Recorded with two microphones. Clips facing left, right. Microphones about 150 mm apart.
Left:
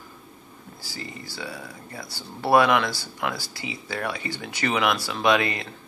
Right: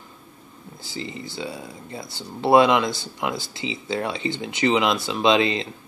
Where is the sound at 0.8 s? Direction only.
20° right (ahead or behind).